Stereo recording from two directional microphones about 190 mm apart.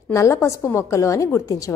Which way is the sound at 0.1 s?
15° left (ahead or behind).